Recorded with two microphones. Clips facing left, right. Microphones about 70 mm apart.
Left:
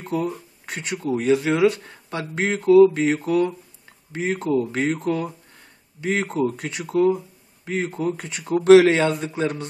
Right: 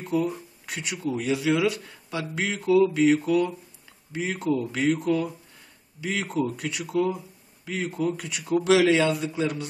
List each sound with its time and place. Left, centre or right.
0.0 s speech: left